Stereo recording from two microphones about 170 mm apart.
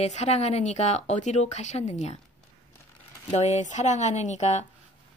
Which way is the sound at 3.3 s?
45° left (ahead or behind).